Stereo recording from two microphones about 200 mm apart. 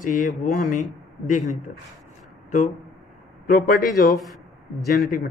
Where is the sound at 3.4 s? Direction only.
50° left (ahead or behind).